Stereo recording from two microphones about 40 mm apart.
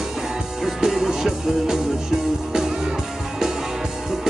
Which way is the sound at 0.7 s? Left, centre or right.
Centre.